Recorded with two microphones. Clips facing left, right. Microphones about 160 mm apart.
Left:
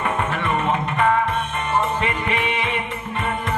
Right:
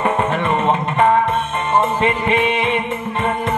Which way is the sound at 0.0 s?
25° right (ahead or behind).